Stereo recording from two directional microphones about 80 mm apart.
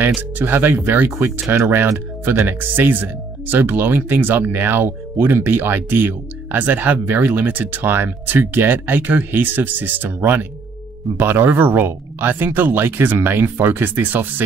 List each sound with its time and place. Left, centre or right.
0.0 s speech: right